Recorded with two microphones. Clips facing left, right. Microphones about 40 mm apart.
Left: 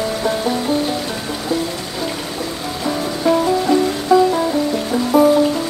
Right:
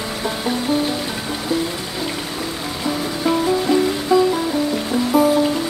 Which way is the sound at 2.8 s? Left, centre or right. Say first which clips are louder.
Left 2 dB; centre.